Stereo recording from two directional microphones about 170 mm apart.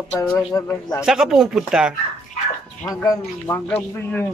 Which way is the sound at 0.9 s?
Centre (ahead or behind).